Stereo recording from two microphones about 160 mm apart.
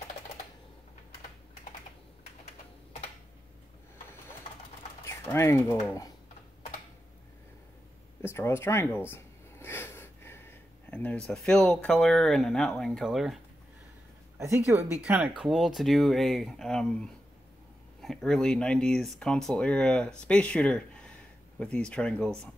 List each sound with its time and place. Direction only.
5.0 s speech: 15° left (ahead or behind)
8.2 s speech: 15° left (ahead or behind)
9.1 s a sound: 15° left (ahead or behind)
11.2 s speech: 5° left (ahead or behind)
14.7 s speech: 10° right (ahead or behind)